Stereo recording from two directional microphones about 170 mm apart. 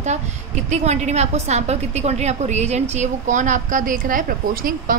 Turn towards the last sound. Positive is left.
turn(degrees=-50)  # may be behind; listen again after turning